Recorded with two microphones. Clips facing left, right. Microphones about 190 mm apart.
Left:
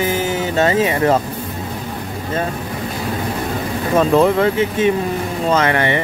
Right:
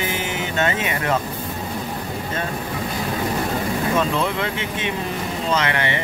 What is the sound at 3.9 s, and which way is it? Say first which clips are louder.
Speech: left 12 dB; 40° left (ahead or behind).